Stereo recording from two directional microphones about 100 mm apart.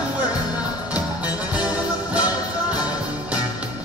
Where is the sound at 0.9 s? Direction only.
15° right (ahead or behind).